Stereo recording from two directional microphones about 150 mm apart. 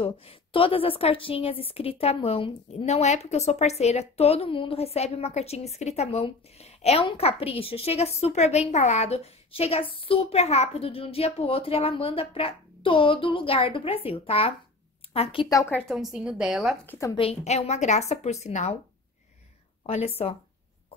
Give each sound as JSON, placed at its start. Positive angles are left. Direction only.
{"t": 0.0, "sound": "a woman's voice", "side_deg": 40}
{"t": 15.5, "sound": "a woman's voice", "side_deg": 15}
{"t": 15.9, "sound": "a woman's voice", "side_deg": -5}
{"t": 16.8, "sound": "a woman's voice", "side_deg": 15}
{"t": 17.1, "sound": "a woman's voice", "side_deg": 40}
{"t": 20.2, "sound": "a woman's voice", "side_deg": 45}